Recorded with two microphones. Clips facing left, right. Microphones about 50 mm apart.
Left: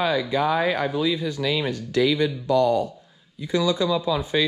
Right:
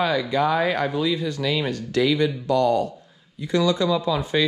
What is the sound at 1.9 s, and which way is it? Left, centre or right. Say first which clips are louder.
Speech: even; right.